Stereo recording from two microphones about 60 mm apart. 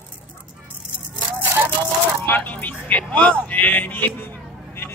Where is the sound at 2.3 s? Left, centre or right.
Left.